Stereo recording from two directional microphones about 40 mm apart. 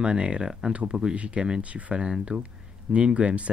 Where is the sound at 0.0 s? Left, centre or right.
Right.